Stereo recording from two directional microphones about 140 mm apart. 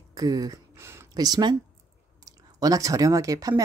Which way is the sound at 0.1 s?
25° right (ahead or behind).